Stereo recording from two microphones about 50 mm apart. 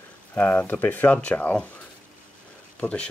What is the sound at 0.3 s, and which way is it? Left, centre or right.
Speech, left.